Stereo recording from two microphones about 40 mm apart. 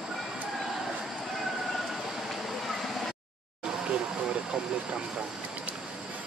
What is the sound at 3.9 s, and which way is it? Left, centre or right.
Vehicle, right.